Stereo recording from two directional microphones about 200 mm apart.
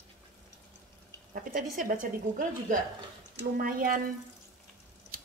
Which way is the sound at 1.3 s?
45° right (ahead or behind).